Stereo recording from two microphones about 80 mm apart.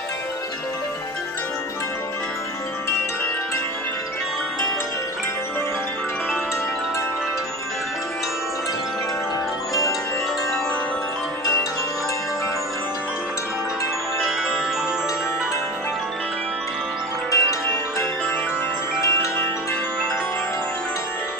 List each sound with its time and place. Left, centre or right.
17.3 s music: left
18.9 s wind chime: left